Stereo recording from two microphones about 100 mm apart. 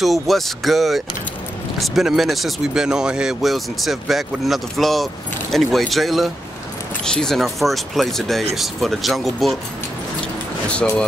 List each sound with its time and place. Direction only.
0.0 s speech: centre (ahead or behind)
10.7 s speech: 10° left (ahead or behind)